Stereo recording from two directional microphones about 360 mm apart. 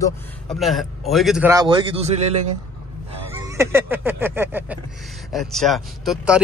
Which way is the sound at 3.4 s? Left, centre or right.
Centre.